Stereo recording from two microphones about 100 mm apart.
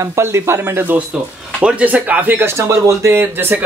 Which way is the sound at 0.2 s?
25° right (ahead or behind).